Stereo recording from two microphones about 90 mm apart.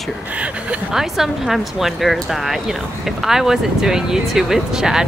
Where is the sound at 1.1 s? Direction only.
5° right (ahead or behind).